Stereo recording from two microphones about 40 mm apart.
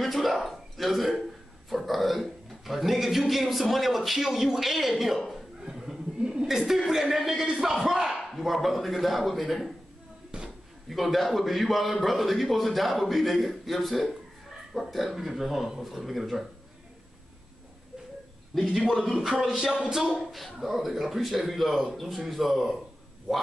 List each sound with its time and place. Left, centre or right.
0.0 s a man's voice: centre
5.3 s chuckle: centre
6.9 s a sound: centre
7.2 s a man's voice: centre
10.3 s speech: right
10.9 s a man's voice: centre
18.5 s a man's voice: centre
19.2 s a sound: centre
20.2 s a man's voice: centre